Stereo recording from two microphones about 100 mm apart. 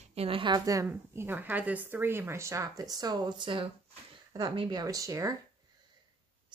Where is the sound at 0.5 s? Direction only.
35° right (ahead or behind); by 3.7 s 55° right (ahead or behind).